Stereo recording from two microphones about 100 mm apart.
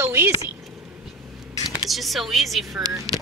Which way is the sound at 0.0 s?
25° right (ahead or behind).